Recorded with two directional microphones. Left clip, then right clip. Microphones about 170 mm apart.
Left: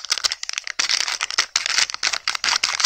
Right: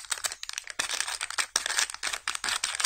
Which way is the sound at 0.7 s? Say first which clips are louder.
Left 10 dB; 10° left (ahead or behind).